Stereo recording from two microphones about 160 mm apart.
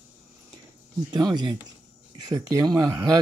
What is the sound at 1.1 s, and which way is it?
Speech, 25° right (ahead or behind).